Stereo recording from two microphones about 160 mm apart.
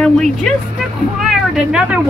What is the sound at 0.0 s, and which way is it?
Speech, 5° left (ahead or behind).